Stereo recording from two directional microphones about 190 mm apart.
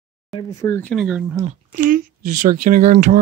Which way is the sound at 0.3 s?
20° left (ahead or behind).